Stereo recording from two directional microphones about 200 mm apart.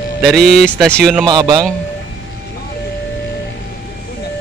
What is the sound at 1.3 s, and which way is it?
Speech, 20° right (ahead or behind).